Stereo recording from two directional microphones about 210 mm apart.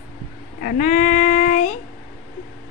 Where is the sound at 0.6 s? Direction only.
40° left (ahead or behind).